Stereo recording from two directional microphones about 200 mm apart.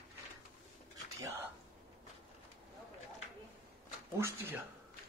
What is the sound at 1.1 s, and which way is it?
Speech, 15° right (ahead or behind).